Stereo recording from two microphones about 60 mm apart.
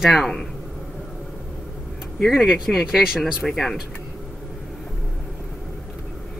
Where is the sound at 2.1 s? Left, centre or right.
Centre.